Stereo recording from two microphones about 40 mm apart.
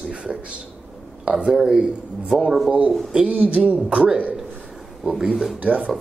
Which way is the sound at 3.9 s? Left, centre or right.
Right.